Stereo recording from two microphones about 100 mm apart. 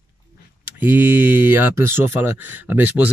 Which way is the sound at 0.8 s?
20° right (ahead or behind).